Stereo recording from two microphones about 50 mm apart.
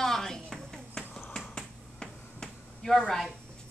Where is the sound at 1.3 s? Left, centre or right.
Centre.